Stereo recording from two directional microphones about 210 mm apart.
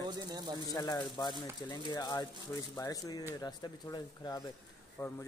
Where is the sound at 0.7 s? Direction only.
15° left (ahead or behind).